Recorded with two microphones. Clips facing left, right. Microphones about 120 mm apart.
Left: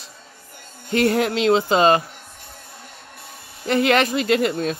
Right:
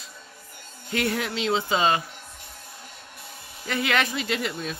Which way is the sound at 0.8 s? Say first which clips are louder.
Left 8 dB; 45° left (ahead or behind).